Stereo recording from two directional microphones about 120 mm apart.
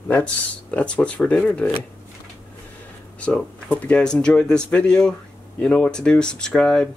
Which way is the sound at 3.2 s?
10° left (ahead or behind).